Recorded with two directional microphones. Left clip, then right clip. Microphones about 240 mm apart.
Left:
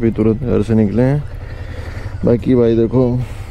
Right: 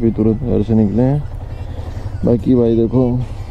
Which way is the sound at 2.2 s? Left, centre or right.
Centre.